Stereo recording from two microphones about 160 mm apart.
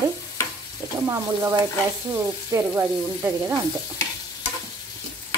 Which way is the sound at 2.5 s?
15° right (ahead or behind).